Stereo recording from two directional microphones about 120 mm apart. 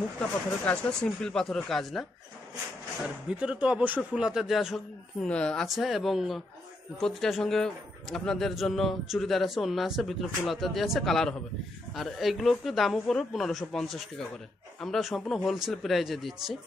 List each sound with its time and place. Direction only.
0.7 s a man's voice: 5° left (ahead or behind)
3.3 s a man's voice: 10° right (ahead or behind)